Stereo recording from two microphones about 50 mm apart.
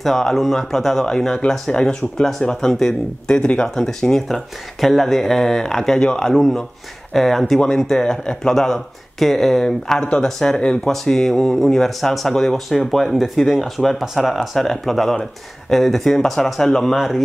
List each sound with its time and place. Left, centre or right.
0.0 s speech: centre
3.3 s speech: centre
9.9 s speech: left
10.2 s speech: centre